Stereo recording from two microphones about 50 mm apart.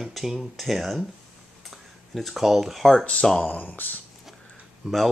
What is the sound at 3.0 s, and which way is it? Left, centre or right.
Speech, centre.